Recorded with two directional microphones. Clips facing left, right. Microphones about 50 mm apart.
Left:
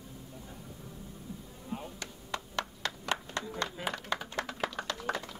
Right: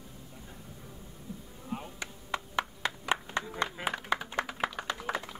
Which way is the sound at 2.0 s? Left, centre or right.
Centre.